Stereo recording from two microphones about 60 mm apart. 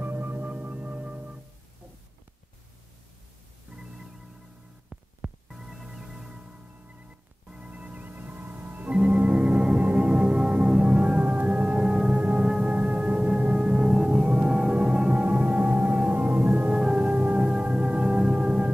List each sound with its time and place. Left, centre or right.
0.0 s singing bowl: right
3.7 s organ: centre
5.2 s music: centre; by 8.9 s right
8.9 s music: centre
16.7 s music: centre